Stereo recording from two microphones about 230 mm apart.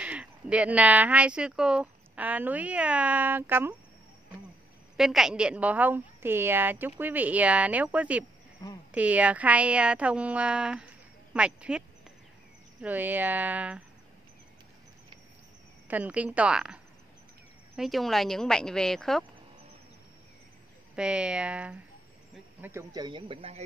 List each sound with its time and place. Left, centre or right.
0.0 s speech: centre
4.9 s a woman's voice: centre
8.6 s speech: centre
8.9 s speech: centre
12.8 s a woman's voice: centre
15.9 s speech: centre
20.9 s speech: centre; by 23.6 s right